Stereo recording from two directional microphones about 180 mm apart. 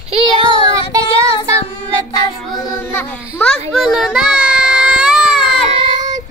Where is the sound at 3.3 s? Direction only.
5° left (ahead or behind).